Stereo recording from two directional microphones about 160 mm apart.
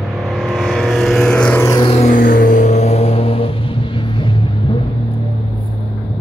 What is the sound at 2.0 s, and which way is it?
Vehicle, 55° left (ahead or behind).